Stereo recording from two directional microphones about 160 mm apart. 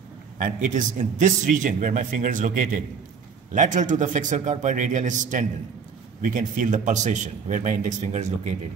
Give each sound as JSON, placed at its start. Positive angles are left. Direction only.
{"t": 0.4, "sound": "a man's voice", "side_deg": -55}